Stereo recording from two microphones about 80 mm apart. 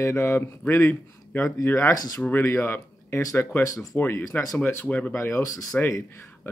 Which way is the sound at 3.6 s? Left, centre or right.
Left.